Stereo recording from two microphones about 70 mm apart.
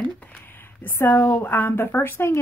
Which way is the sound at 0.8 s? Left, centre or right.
Left.